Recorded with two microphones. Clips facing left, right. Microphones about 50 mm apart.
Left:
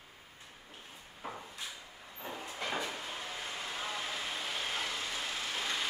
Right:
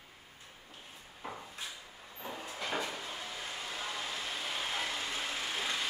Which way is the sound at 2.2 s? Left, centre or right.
Centre.